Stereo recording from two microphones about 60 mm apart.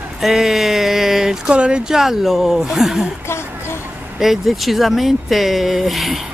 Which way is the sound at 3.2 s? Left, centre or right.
Left.